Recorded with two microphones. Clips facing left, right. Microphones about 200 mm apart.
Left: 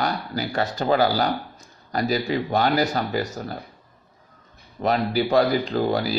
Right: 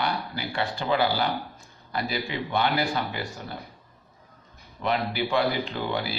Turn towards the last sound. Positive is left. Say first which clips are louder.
# left 7 dB
turn(degrees=40)  # may be behind; listen again after turning